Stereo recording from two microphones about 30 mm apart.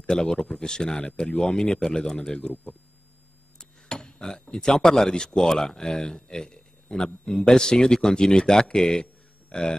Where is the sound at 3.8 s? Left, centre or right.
Left.